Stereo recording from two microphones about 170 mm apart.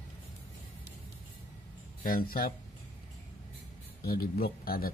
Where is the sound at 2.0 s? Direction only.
60° left (ahead or behind).